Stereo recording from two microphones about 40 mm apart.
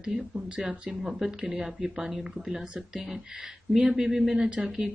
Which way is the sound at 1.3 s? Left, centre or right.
Centre.